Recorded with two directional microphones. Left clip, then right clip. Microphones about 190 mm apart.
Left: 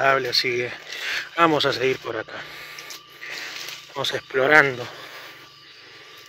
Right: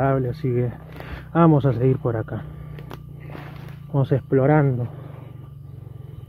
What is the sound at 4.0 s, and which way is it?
Speech, centre (ahead or behind).